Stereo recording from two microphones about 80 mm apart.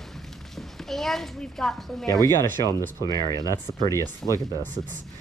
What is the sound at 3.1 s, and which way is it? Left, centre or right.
Speech, left.